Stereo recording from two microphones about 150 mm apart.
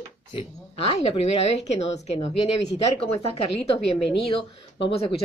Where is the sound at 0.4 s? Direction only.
45° left (ahead or behind).